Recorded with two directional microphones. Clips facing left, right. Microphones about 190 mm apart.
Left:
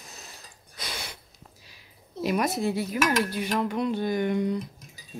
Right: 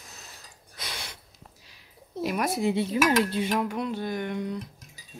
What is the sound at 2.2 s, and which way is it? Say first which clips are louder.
Speech: left 1 dB; 5° right (ahead or behind).